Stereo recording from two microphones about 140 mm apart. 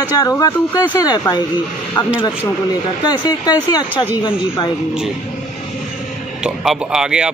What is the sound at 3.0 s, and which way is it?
Speech, 30° left (ahead or behind).